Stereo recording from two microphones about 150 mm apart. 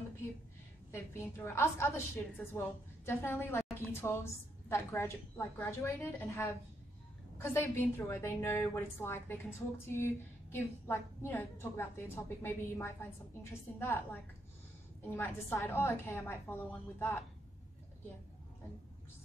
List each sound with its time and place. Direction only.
0.9 s a woman's voice: 15° left (ahead or behind)
15.0 s a woman's voice: 15° left (ahead or behind)